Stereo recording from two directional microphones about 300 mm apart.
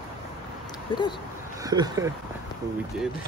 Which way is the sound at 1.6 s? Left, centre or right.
Centre.